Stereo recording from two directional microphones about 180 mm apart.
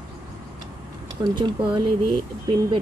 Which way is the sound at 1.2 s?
25° right (ahead or behind).